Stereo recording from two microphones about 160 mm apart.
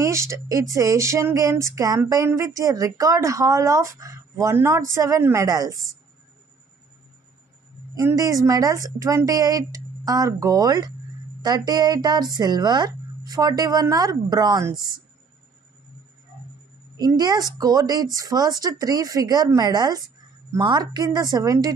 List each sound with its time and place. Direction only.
0.0 s speech: 20° right (ahead or behind)
7.9 s speech: 20° right (ahead or behind)
17.0 s speech: 25° right (ahead or behind)